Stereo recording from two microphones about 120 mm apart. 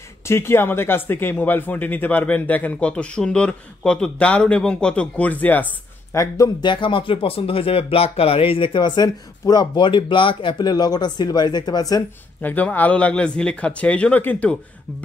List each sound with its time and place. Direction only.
0.2 s speech: 20° left (ahead or behind)
6.1 s speech: 30° left (ahead or behind)
6.6 s speech: 40° left (ahead or behind)
12.4 s speech: 15° left (ahead or behind)